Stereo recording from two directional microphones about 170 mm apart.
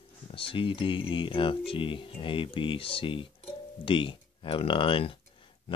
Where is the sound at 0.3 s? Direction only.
30° left (ahead or behind).